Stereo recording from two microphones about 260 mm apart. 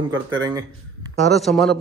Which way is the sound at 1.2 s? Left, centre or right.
Centre.